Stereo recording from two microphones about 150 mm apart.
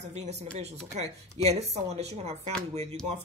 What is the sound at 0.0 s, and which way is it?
Speech, 45° right (ahead or behind).